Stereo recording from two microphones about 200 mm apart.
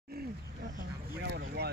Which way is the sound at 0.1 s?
50° right (ahead or behind).